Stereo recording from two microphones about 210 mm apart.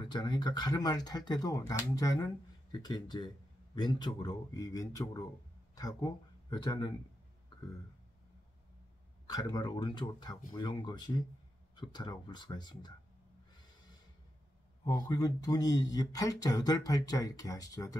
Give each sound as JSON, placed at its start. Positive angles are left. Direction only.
{"t": 0.0, "sound": "speech", "side_deg": 20}
{"t": 9.3, "sound": "speech", "side_deg": 20}
{"t": 14.9, "sound": "speech", "side_deg": 15}